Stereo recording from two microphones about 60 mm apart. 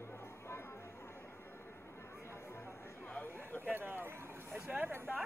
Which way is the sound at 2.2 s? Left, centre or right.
Left.